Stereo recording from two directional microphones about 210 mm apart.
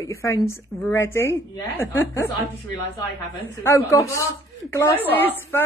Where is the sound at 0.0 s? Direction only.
15° left (ahead or behind).